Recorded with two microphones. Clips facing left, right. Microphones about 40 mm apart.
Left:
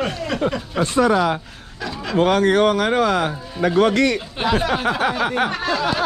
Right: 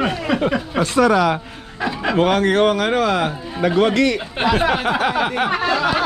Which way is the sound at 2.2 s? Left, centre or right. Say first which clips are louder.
Left 1 dB; right.